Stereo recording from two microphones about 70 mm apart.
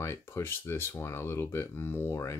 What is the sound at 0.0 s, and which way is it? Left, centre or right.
Speech, left.